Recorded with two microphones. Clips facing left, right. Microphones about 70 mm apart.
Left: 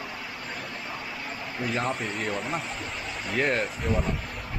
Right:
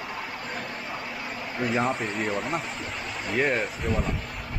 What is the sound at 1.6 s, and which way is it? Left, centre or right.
Speech, centre.